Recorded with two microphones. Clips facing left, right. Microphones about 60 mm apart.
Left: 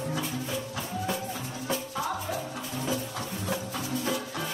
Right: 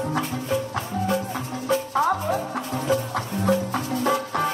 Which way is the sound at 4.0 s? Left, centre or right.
Right.